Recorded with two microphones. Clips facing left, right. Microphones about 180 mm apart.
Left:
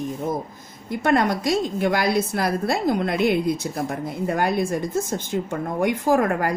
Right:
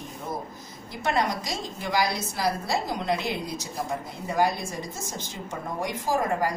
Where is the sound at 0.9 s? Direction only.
55° left (ahead or behind).